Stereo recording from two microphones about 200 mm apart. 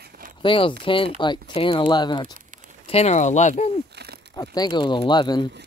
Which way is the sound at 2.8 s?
30° left (ahead or behind).